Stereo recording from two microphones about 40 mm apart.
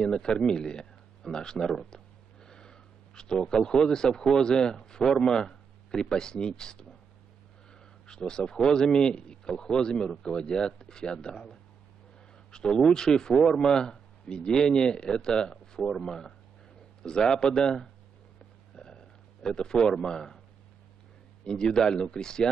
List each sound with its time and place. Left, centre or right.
0.0 s speech: centre
2.4 s a sound: centre
4.4 s speech: centre
8.1 s speech: centre
12.4 s speech: centre
18.8 s a sound: centre
21.5 s speech: centre